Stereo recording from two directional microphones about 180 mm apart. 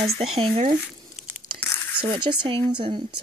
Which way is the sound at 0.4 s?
35° right (ahead or behind).